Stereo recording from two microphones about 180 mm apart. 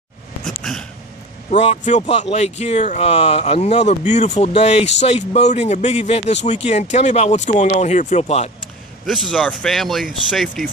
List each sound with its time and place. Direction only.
1.5 s speech: 40° left (ahead or behind)
9.0 s speech: centre (ahead or behind)